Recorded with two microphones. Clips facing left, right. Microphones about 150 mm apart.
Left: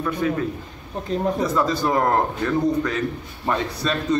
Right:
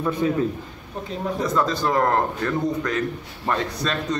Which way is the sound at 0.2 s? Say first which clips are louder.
Even; 20° right (ahead or behind).